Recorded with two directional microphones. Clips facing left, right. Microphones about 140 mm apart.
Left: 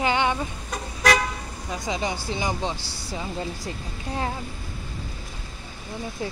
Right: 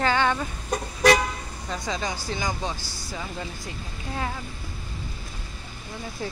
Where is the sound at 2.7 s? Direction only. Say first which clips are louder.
Left 1 dB; 65° left (ahead or behind).